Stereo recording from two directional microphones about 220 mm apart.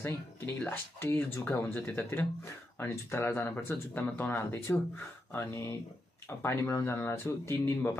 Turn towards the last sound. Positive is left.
turn(degrees=10)  # may be behind; listen again after turning